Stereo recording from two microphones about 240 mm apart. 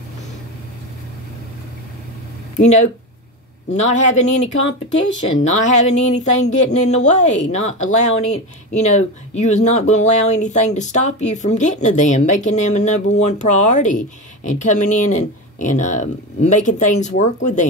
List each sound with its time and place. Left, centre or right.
2.6 s speech: left